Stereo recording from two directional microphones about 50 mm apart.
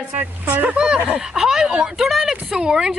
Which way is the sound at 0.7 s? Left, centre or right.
Centre.